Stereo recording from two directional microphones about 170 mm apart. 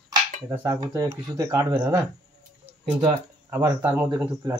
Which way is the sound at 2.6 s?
35° right (ahead or behind).